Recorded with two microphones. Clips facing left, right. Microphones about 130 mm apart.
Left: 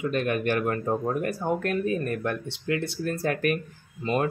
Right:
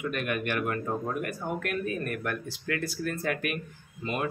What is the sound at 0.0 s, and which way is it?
Speech, 30° left (ahead or behind).